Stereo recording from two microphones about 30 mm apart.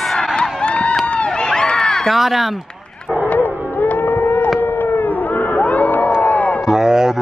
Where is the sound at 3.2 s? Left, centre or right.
Left.